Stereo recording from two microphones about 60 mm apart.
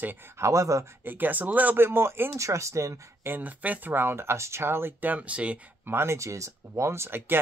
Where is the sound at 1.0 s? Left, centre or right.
Right.